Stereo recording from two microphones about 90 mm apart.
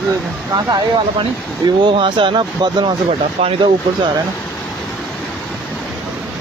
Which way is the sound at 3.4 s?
90° right.